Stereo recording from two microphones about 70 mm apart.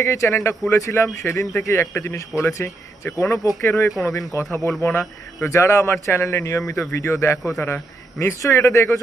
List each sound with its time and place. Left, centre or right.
0.0 s a man's voice: left
4.1 s speech: left
4.6 s a man's voice: left